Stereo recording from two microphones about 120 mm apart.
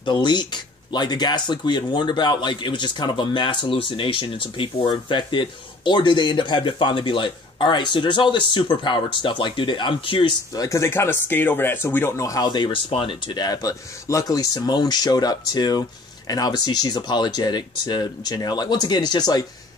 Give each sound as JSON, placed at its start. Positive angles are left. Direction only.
{"t": 0.0, "sound": "speech", "side_deg": 40}
{"t": 10.5, "sound": "speech", "side_deg": 30}